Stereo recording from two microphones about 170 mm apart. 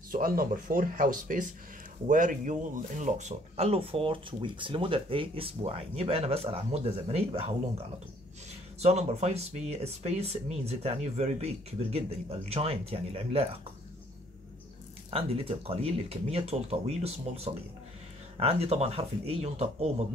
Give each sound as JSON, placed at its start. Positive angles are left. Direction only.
{"t": 0.1, "sound": "speech", "side_deg": -60}
{"t": 8.8, "sound": "speech", "side_deg": -40}
{"t": 15.0, "sound": "speech", "side_deg": -35}